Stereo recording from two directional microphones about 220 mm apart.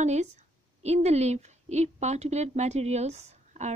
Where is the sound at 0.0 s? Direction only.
30° right (ahead or behind).